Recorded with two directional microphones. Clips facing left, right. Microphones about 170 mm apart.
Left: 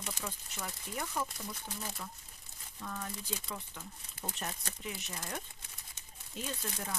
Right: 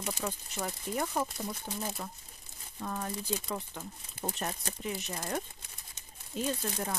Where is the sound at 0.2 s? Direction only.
45° right (ahead or behind).